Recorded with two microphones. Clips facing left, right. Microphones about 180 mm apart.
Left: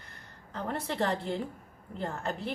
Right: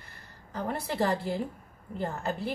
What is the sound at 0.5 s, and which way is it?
A woman's voice, 10° right (ahead or behind).